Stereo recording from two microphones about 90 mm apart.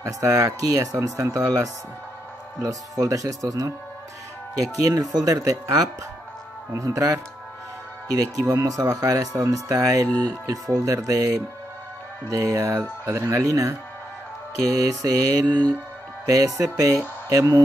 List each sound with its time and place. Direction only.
0.0 s speech: 35° right (ahead or behind)
4.8 s speech: 40° right (ahead or behind)
14.7 s mantra: 40° right (ahead or behind)
16.3 s speech: 40° right (ahead or behind)